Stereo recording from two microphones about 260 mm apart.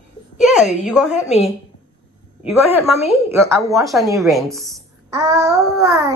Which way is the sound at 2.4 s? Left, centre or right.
Left.